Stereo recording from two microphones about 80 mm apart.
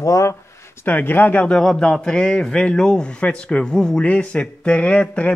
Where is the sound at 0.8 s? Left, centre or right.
Left.